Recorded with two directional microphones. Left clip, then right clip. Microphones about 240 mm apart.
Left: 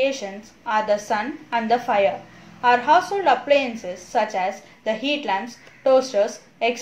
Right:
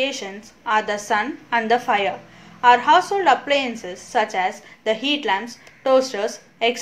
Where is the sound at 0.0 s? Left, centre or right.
Right.